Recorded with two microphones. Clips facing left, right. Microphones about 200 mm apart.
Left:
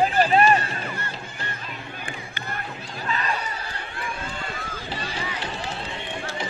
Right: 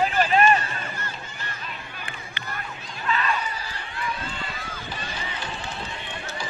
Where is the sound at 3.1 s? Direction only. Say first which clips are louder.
Right 2 dB; 40° left (ahead or behind).